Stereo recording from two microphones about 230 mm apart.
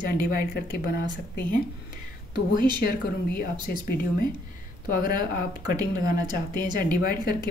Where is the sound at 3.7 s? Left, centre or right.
Left.